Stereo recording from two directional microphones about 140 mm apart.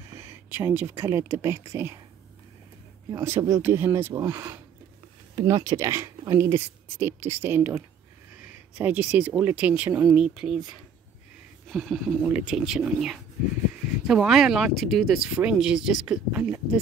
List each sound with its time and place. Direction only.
0.1 s speech: 20° right (ahead or behind)
3.1 s speech: 20° right (ahead or behind)
5.3 s speech: 35° right (ahead or behind); by 10.6 s 5° right (ahead or behind)
11.6 s speech: centre (ahead or behind)